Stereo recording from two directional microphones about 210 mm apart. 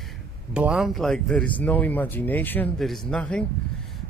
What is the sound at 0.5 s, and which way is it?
Speech, 5° right (ahead or behind).